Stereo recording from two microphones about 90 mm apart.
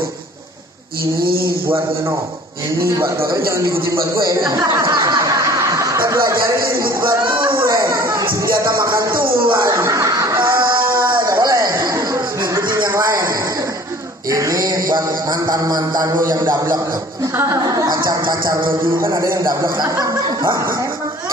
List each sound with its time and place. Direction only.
3.3 s a man's voice: 30° right (ahead or behind)
4.2 s a man's voice: 50° right (ahead or behind)
4.6 s music: 35° right (ahead or behind)
7.1 s music: 65° right (ahead or behind)
7.6 s chatter: 35° right (ahead or behind)
9.4 s speech: 60° right (ahead or behind)
9.8 s chuckle: 35° right (ahead or behind)
11.2 s a sound: 45° right (ahead or behind)
11.9 s a sound: 35° right (ahead or behind)
14.3 s a man's voice: 40° right (ahead or behind)
17.8 s a man's voice: 50° right (ahead or behind)
19.0 s a man's voice: 35° right (ahead or behind)
19.4 s a man's voice: 45° right (ahead or behind)